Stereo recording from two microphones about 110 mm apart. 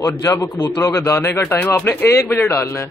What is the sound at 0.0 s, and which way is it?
A man's voice, 30° left (ahead or behind).